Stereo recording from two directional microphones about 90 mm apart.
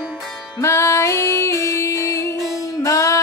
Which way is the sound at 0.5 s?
30° left (ahead or behind).